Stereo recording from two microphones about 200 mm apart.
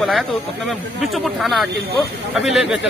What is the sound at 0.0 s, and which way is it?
Speech, centre (ahead or behind).